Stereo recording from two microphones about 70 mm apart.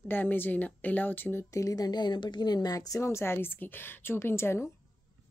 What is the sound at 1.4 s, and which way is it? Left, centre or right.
Speech, left.